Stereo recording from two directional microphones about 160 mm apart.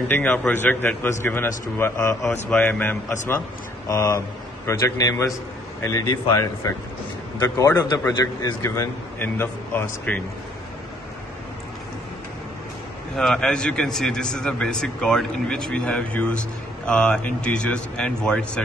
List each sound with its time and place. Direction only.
0.1 s a man's voice: 10° left (ahead or behind)
3.9 s a man's voice: 20° left (ahead or behind)
13.1 s a man's voice: 5° left (ahead or behind)